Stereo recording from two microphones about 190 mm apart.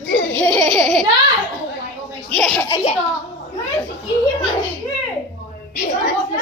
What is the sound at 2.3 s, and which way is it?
Laughter, 5° left (ahead or behind).